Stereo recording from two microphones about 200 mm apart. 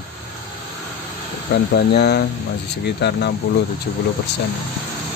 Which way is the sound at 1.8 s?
55° left (ahead or behind).